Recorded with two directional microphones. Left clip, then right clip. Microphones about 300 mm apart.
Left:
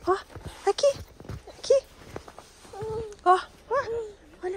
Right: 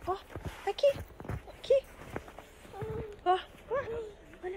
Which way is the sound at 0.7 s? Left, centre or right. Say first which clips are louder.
Left 4 dB; left.